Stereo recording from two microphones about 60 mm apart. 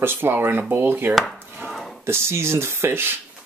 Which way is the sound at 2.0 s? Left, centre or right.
Right.